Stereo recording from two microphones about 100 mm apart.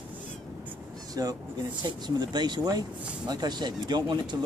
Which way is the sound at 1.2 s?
35° right (ahead or behind).